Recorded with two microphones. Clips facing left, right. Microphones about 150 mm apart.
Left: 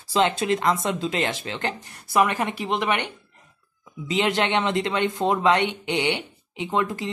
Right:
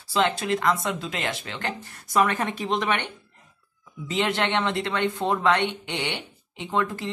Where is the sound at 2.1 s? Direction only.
10° left (ahead or behind).